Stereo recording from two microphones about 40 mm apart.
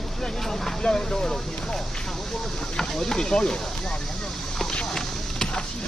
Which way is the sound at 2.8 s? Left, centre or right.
Centre.